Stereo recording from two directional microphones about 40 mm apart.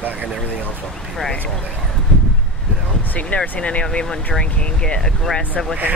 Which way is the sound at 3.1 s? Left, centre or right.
Left.